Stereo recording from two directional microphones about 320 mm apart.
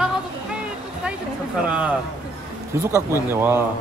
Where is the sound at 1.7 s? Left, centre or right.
Centre.